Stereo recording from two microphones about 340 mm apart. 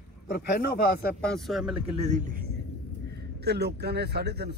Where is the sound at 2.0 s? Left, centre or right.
Right.